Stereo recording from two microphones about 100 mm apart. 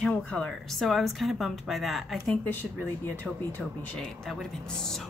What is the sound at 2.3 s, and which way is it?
Speech, 20° left (ahead or behind).